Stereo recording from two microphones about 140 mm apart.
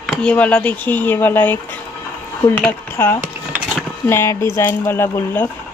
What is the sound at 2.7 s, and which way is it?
Speech, 15° left (ahead or behind).